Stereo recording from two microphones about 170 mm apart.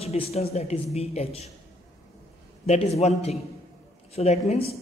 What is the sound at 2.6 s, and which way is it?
Speech, 40° left (ahead or behind).